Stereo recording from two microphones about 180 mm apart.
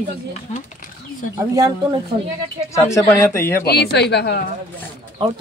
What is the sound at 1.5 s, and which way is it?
Speech, 20° right (ahead or behind).